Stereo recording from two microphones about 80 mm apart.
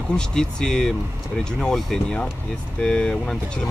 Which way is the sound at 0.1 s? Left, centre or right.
Centre.